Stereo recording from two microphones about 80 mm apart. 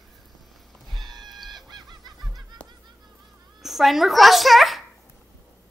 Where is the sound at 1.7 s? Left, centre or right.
Right.